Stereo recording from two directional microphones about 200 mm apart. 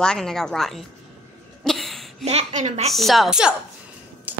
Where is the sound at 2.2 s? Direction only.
35° right (ahead or behind).